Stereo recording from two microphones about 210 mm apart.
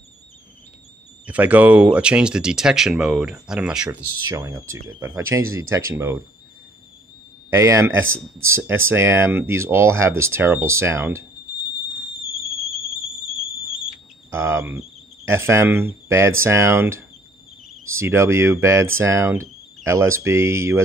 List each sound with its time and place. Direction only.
1.2 s speech: 5° right (ahead or behind)
4.3 s speech: 15° right (ahead or behind)
7.5 s speech: 15° right (ahead or behind)
12.4 s a sound: centre (ahead or behind)
14.3 s speech: 10° right (ahead or behind)